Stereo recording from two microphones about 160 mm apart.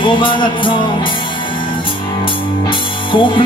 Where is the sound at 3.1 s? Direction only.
30° left (ahead or behind).